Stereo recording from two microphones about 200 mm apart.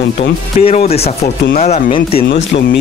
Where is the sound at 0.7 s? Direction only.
30° left (ahead or behind).